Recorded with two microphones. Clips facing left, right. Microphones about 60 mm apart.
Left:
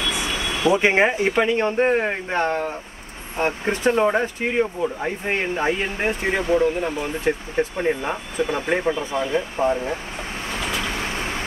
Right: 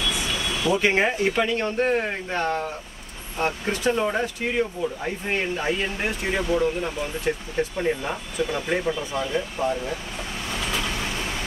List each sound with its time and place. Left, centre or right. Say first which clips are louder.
0.0 s speech: left 2 dB; left
10.5 s vehicle: left 2 dB; left